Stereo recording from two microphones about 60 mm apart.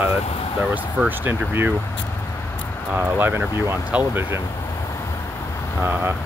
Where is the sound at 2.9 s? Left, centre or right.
Right.